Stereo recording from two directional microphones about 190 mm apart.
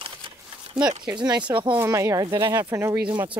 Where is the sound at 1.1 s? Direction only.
20° right (ahead or behind).